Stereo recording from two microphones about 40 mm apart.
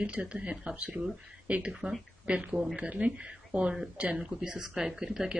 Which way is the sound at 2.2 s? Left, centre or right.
Right.